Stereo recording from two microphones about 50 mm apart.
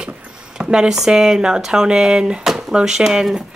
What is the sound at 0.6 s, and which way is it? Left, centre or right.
A woman's voice, centre.